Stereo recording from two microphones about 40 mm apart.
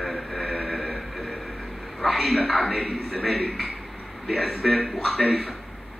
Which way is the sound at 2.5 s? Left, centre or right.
Left.